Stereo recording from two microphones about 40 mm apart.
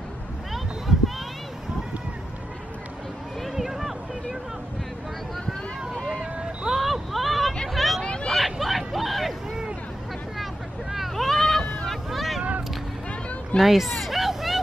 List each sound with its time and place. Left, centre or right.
0.5 s a sound: centre
3.4 s a sound: centre
6.1 s vehicle: centre
6.8 s a sound: centre
7.7 s hubbub: centre
8.0 s hubbub: left
8.5 s hubbub: centre
10.3 s vehicle: centre
11.2 s a sound: centre
11.9 s vehicle: centre
13.6 s speech: centre
13.9 s hubbub: centre